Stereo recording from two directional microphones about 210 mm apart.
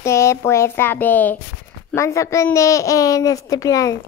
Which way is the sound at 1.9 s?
15° left (ahead or behind).